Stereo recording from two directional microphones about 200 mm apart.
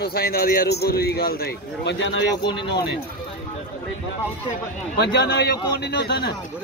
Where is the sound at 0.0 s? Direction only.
50° left (ahead or behind).